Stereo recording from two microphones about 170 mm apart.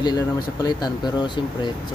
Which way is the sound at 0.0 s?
25° left (ahead or behind).